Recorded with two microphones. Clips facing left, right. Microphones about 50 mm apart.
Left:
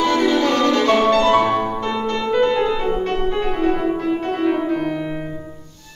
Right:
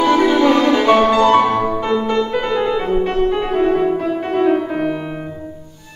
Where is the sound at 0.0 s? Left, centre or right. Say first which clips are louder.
Right 4 dB; centre.